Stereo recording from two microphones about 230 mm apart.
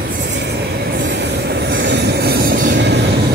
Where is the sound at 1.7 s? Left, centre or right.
Right.